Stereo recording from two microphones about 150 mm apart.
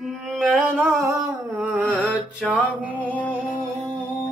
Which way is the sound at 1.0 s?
20° right (ahead or behind).